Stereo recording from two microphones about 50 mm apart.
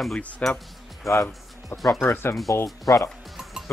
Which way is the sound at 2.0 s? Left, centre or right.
Left.